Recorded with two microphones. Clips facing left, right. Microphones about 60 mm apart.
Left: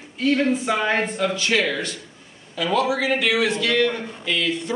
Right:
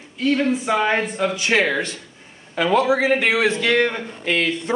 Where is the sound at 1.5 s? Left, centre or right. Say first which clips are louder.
Right 3 dB; right.